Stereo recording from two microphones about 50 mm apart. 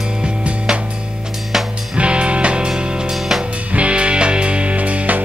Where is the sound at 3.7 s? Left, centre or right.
Right.